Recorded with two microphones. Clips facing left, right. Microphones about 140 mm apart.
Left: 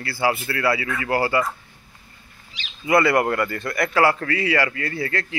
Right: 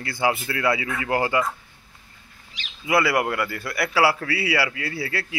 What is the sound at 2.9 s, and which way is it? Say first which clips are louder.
Speech: left 3 dB; 5° right (ahead or behind).